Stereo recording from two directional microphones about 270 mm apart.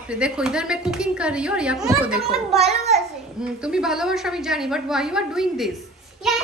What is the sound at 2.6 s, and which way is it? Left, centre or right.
Speech, right.